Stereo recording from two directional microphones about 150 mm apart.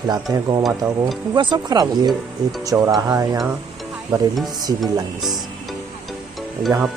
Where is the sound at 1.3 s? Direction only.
30° right (ahead or behind).